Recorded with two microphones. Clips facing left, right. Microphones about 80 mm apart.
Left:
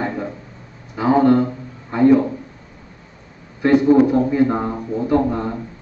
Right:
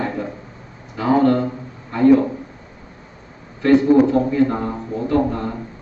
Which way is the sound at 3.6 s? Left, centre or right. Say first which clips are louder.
Even; centre.